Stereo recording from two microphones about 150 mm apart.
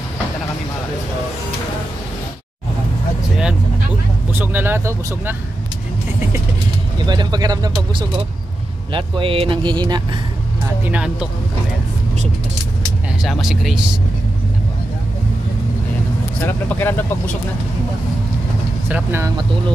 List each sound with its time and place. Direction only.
4.3 s speech: 15° right (ahead or behind)
7.1 s speech: 30° right (ahead or behind)
8.9 s speech: 35° right (ahead or behind)
10.9 s speech: 5° right (ahead or behind)
13.2 s speech: 5° right (ahead or behind)
16.4 s speech: 15° left (ahead or behind)
18.9 s speech: 15° right (ahead or behind)